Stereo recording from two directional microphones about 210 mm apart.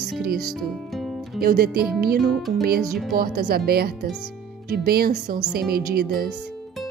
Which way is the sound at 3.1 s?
50° right (ahead or behind).